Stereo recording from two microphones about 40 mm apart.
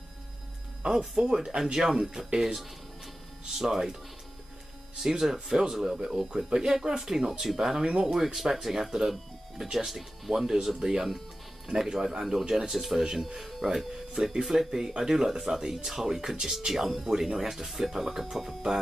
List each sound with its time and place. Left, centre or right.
0.8 s speech: centre
5.0 s speech: centre